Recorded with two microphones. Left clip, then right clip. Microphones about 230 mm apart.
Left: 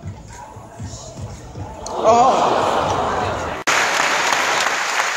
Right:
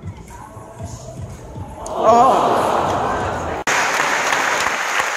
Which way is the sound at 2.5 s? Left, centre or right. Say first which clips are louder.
Right 1 dB; centre.